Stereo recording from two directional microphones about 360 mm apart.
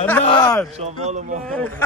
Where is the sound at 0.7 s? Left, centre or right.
Centre.